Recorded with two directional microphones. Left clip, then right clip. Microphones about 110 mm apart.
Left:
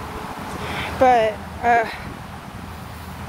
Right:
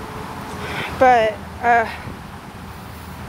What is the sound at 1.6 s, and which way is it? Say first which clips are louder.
Speech: right 2 dB; 20° left (ahead or behind).